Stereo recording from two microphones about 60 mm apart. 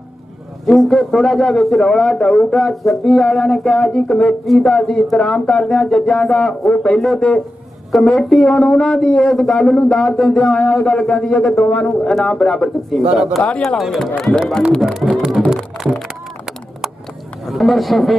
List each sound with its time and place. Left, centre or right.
0.7 s a man's voice: centre
7.0 s a man's voice: centre
12.9 s a man's voice: centre
15.0 s music: centre
15.5 s music: centre
17.5 s speech: centre